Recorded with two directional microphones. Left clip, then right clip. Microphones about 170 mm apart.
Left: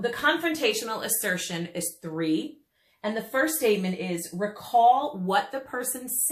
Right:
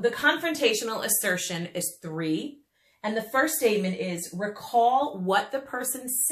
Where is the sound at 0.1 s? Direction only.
20° right (ahead or behind).